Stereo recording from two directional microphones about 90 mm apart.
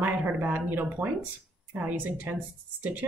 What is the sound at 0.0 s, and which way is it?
A woman's voice, 20° right (ahead or behind).